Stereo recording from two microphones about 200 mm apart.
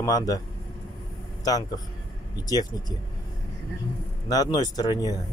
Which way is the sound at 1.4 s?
20° left (ahead or behind).